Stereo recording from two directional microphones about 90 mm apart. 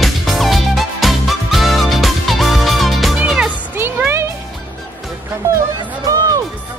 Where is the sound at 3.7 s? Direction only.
25° right (ahead or behind).